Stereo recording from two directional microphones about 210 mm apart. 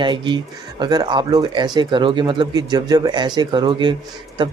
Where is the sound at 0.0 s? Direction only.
20° right (ahead or behind).